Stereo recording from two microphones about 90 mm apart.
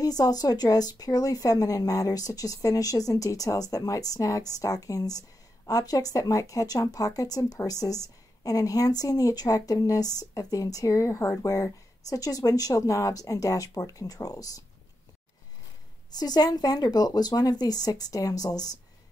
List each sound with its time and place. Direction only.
0.0 s a woman's voice: 45° left (ahead or behind)
16.2 s speech: 50° left (ahead or behind)